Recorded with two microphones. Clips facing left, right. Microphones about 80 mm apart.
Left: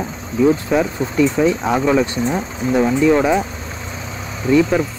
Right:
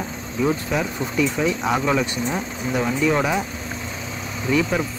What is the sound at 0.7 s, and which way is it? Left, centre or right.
Speech, left.